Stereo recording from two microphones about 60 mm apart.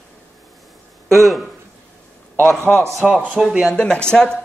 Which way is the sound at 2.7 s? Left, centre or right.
Left.